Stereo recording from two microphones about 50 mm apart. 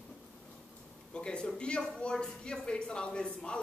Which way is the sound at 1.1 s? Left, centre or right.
Centre.